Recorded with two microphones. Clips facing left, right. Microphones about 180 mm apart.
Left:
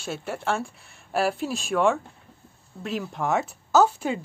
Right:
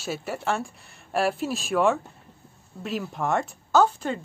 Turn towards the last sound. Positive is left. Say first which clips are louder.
# left 1 dB
turn(degrees=5)  # may be behind; listen again after turning